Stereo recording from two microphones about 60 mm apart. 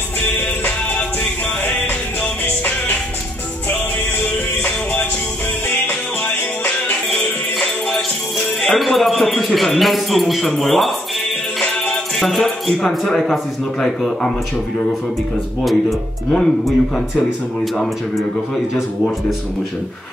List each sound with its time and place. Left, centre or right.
4.6 s music: left
8.7 s a man's voice: centre
11.6 s music: left
11.9 s music: centre
13.0 s a man's voice: centre
15.6 s a man's voice: centre